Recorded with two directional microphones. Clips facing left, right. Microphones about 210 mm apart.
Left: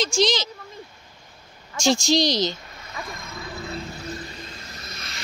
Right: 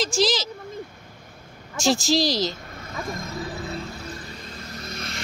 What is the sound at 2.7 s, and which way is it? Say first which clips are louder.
Vehicle: right 4 dB; 50° right (ahead or behind).